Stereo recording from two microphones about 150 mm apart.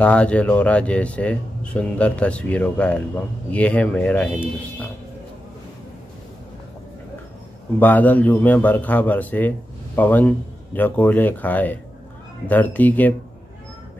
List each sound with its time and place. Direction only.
0.0 s speech: 10° left (ahead or behind)
7.8 s speech: 10° left (ahead or behind)